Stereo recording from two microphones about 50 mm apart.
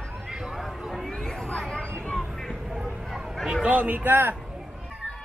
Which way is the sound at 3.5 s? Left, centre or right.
Right.